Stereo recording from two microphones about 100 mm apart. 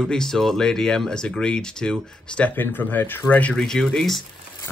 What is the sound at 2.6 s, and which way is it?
Speech, 20° left (ahead or behind).